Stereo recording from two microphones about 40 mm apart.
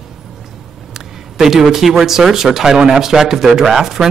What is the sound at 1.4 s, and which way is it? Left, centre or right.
A man's voice, centre.